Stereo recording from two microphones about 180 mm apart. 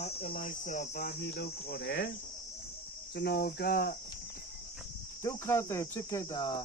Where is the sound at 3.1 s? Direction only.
60° left (ahead or behind).